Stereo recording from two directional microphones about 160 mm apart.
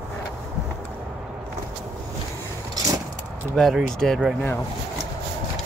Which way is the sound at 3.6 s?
Centre (ahead or behind).